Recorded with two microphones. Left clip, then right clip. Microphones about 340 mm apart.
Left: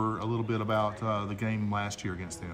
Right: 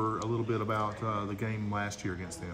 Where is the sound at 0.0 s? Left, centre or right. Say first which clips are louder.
Even; left.